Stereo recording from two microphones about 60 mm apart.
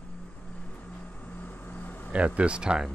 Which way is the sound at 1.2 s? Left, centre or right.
Left.